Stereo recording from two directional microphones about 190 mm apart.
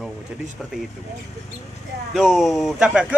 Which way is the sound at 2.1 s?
Centre (ahead or behind).